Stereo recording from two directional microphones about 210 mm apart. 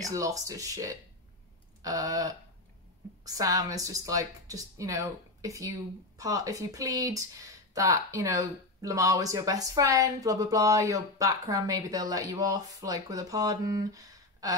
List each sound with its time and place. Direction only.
0.1 s a woman's voice: 15° right (ahead or behind)